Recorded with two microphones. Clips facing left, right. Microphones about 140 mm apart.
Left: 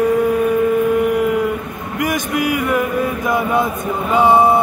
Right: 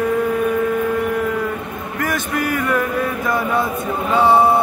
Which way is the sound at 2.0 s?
10° left (ahead or behind).